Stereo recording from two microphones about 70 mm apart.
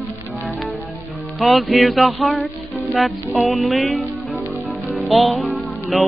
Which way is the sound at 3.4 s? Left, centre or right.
Centre.